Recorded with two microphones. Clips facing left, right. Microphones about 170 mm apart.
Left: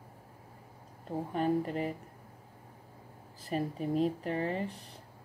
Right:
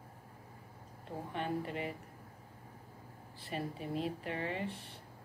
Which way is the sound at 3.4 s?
40° left (ahead or behind).